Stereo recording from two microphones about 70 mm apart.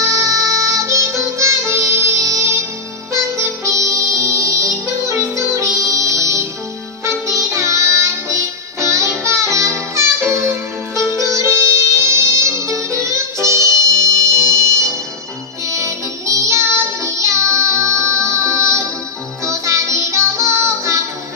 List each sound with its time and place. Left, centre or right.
0.0 s music: right
15.6 s music: right